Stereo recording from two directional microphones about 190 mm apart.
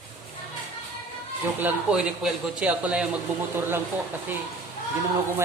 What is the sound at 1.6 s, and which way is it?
Speech, 5° right (ahead or behind).